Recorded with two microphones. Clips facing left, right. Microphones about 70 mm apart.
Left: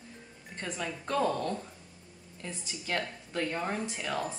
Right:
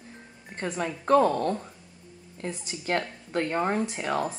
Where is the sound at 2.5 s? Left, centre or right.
Right.